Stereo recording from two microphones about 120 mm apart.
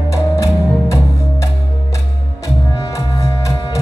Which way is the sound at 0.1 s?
25° left (ahead or behind).